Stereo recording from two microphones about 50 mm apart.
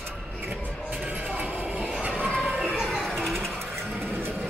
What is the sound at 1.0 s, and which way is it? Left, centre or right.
Music, right.